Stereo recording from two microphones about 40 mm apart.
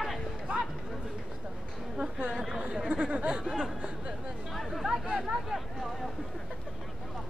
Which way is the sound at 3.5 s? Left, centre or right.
Centre.